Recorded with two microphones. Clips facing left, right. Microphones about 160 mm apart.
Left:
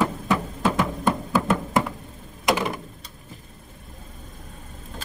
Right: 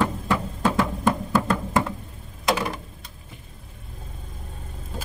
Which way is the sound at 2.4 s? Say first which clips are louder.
Left 1 dB; 15° left (ahead or behind).